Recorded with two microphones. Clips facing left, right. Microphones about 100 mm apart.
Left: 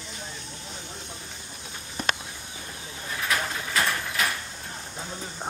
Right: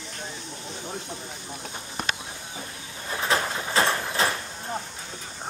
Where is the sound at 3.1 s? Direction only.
30° right (ahead or behind).